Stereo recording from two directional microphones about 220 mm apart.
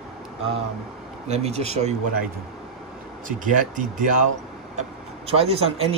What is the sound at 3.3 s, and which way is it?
Speech, 35° right (ahead or behind).